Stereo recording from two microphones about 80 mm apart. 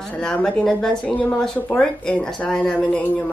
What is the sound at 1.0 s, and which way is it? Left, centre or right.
Speech, centre.